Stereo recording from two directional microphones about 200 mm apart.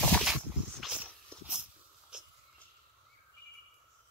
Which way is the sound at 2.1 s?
5° right (ahead or behind).